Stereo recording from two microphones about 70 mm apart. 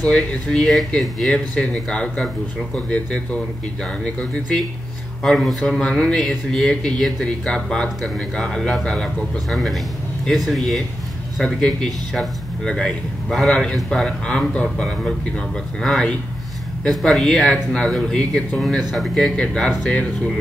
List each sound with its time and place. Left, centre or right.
0.1 s speech: centre
15.8 s speech: centre